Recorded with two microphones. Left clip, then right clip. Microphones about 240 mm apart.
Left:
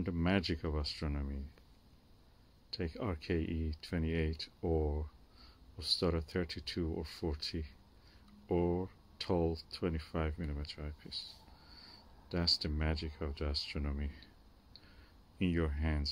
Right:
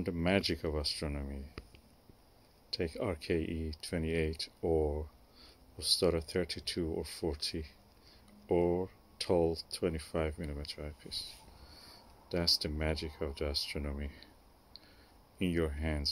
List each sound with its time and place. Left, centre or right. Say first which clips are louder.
0.0 s speech: right 3 dB; centre
2.7 s speech: right 5 dB; centre